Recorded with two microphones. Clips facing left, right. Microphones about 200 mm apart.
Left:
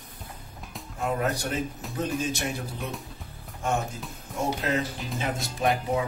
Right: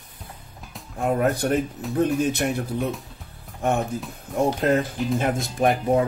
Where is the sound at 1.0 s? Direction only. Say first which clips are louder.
Right 6 dB; 55° right (ahead or behind).